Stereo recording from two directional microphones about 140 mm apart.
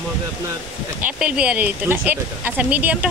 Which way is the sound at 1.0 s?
10° right (ahead or behind).